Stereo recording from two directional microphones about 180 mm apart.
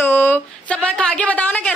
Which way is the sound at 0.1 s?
10° left (ahead or behind).